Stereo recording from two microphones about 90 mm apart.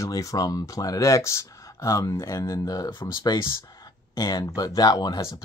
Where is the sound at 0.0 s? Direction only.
40° left (ahead or behind).